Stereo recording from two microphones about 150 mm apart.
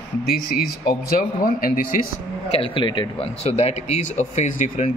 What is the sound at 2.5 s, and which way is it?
Speech, 35° left (ahead or behind).